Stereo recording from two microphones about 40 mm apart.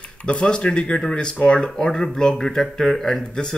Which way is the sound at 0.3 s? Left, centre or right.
Left.